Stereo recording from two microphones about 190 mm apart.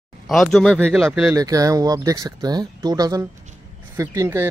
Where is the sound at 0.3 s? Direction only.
Centre (ahead or behind).